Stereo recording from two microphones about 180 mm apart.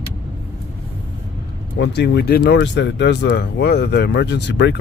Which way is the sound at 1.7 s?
75° left (ahead or behind).